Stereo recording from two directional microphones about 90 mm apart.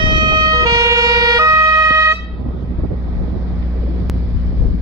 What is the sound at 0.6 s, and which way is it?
Emergency vehicle, 40° right (ahead or behind).